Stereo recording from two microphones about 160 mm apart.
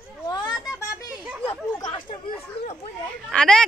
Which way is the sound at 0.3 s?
25° left (ahead or behind).